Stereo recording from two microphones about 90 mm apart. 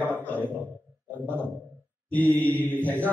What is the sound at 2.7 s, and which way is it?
Speech, 20° left (ahead or behind).